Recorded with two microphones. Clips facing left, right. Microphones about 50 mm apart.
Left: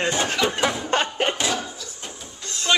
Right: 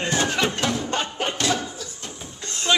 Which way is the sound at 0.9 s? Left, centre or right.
Left.